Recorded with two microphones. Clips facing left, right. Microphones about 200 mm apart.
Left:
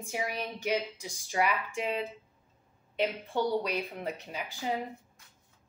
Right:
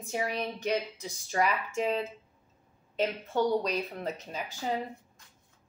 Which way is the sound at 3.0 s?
15° left (ahead or behind).